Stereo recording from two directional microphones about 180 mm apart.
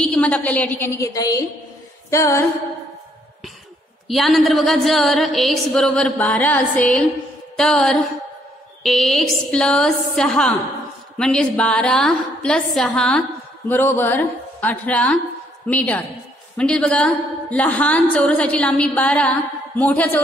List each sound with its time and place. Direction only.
0.0 s a woman's voice: 5° left (ahead or behind)
2.0 s music: 15° left (ahead or behind)
4.1 s a sound: centre (ahead or behind)
13.7 s a woman's voice: 10° left (ahead or behind)